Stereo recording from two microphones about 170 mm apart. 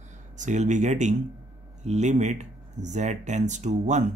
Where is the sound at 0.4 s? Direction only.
45° right (ahead or behind).